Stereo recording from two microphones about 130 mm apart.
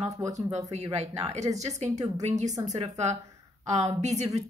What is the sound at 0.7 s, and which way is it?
Speech, 55° right (ahead or behind).